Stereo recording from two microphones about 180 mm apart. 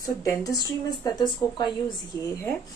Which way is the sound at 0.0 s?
20° left (ahead or behind).